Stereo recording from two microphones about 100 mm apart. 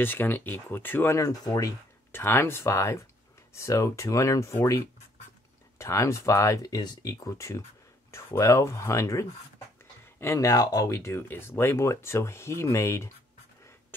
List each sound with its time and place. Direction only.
0.0 s speech: 20° left (ahead or behind); by 1.7 s 35° left (ahead or behind)
2.1 s speech: 25° left (ahead or behind)
5.8 s speech: 30° left (ahead or behind)